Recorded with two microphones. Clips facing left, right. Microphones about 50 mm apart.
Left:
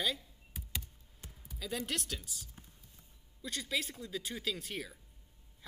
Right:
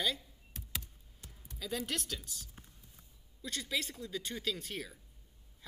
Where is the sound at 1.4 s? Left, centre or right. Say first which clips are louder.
Even; centre.